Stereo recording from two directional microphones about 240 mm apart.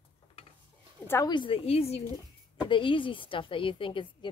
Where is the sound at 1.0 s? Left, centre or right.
Centre.